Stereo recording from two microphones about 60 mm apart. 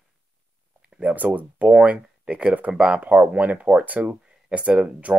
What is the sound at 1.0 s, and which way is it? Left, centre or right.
Speech, right.